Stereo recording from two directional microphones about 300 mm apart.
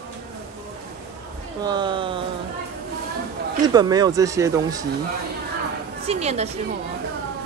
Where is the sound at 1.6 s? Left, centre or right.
Centre.